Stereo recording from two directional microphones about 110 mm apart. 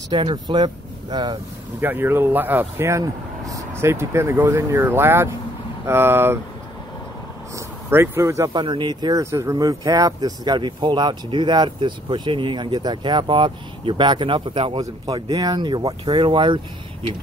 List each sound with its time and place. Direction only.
0.1 s speech: 45° right (ahead or behind)
1.8 s speech: 20° right (ahead or behind)
7.5 s speech: 20° right (ahead or behind)
8.5 s speech: 45° right (ahead or behind)
9.2 s speech: 25° right (ahead or behind); by 14.8 s 55° right (ahead or behind)
14.8 s speech: 35° right (ahead or behind)